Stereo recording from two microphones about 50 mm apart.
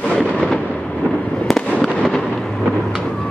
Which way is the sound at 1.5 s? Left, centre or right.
Centre.